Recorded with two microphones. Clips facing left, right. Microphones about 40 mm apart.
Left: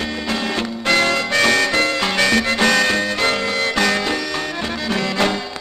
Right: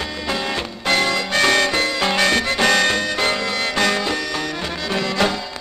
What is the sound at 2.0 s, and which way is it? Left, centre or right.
Music, centre.